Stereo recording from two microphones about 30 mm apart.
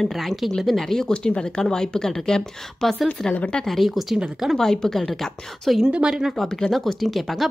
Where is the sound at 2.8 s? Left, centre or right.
Centre.